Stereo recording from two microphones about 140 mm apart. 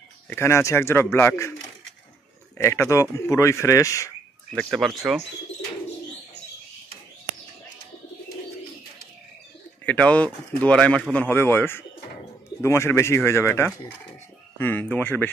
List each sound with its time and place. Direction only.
0.3 s speech: 20° left (ahead or behind)
2.5 s speech: 20° left (ahead or behind)
4.6 s speech: centre (ahead or behind)
9.8 s speech: 10° left (ahead or behind)